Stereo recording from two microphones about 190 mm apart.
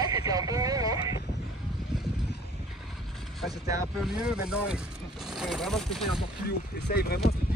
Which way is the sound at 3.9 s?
5° right (ahead or behind).